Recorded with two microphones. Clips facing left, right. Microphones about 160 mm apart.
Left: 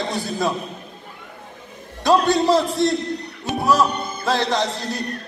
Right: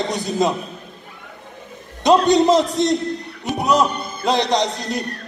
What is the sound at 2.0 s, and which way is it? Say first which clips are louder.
A man's voice: right 3 dB; 20° right (ahead or behind).